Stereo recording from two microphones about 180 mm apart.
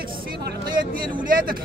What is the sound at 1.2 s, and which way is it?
Speech, 50° right (ahead or behind).